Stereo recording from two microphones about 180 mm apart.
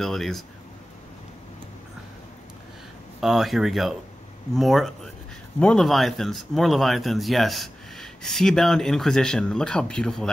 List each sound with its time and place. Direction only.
0.0 s speech: centre (ahead or behind)
3.2 s speech: centre (ahead or behind)